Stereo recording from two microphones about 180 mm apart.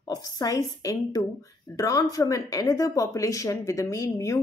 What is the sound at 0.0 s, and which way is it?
A woman's voice, 20° left (ahead or behind).